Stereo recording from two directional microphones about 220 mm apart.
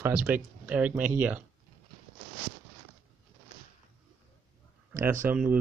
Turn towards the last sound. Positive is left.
turn(degrees=-10)  # may be behind; listen again after turning